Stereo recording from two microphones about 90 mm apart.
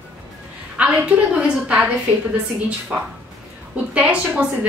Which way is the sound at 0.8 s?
10° right (ahead or behind).